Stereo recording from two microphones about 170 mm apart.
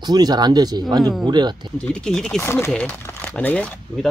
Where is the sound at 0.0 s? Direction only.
25° right (ahead or behind).